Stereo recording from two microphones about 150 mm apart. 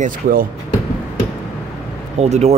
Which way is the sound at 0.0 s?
70° right (ahead or behind).